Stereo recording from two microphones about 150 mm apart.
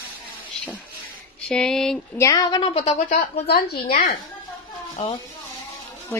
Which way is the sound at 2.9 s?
60° left (ahead or behind).